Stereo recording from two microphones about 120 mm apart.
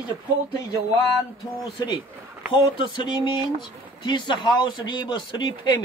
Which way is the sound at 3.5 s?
40° left (ahead or behind).